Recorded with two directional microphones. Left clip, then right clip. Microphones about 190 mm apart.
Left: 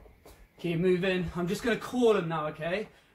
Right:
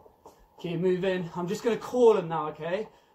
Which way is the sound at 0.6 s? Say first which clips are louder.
Even; 25° left (ahead or behind).